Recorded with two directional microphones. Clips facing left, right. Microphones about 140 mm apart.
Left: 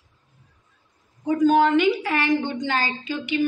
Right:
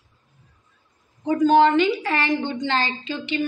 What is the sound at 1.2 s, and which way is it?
A woman's voice, centre (ahead or behind).